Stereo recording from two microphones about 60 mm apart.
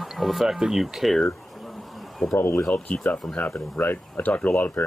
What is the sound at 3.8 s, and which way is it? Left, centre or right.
Speech, left.